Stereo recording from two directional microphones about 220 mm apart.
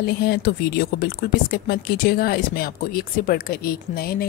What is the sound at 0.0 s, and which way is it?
Speech, 45° left (ahead or behind).